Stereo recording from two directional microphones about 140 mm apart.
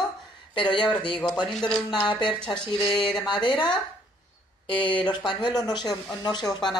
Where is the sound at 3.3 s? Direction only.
35° left (ahead or behind).